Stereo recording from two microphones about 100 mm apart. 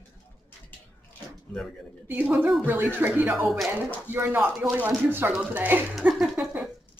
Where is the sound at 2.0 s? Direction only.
15° right (ahead or behind).